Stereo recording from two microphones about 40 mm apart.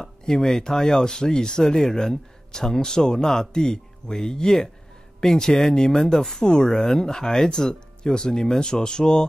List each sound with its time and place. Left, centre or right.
0.0 s speech: centre